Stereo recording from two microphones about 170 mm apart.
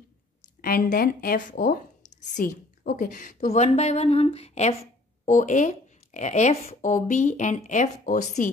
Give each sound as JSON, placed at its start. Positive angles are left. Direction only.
{"t": 0.4, "sound": "speech", "side_deg": 55}